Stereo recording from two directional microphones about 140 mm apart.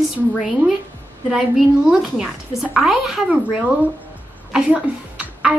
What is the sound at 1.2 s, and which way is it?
A woman's voice, centre (ahead or behind).